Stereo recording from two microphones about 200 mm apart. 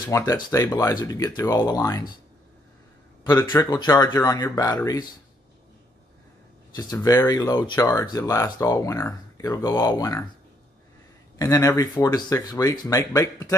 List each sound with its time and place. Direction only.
0.1 s speech: 15° left (ahead or behind)
3.3 s speech: 20° left (ahead or behind)
6.7 s speech: 20° left (ahead or behind)
11.3 s speech: 15° left (ahead or behind)